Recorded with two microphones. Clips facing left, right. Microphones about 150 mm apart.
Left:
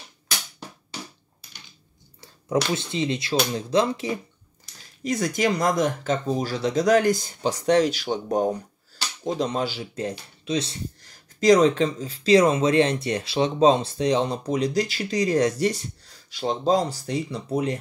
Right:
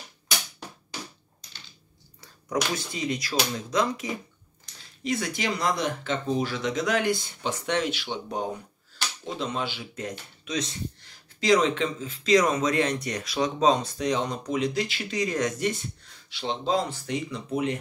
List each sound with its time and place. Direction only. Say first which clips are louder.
2.5 s speech: left 5 dB; 25° left (ahead or behind)
5.0 s speech: left 5 dB; 40° left (ahead or behind)